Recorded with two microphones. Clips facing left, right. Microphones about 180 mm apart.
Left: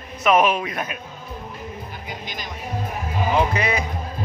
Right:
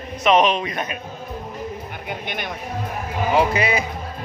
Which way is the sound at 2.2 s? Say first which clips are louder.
Right 5 dB; 60° right (ahead or behind).